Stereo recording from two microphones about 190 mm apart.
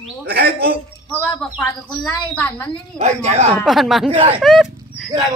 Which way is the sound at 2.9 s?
35° right (ahead or behind).